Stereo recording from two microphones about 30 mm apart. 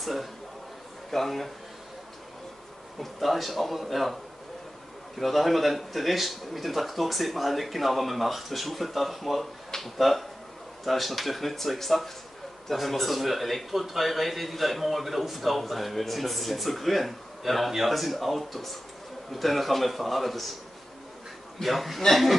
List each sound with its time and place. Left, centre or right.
0.0 s a man's voice: centre
3.0 s a man's voice: centre
5.2 s a man's voice: centre
9.7 s finger snapping: centre
9.9 s a man's voice: centre
21.6 s a man's voice: centre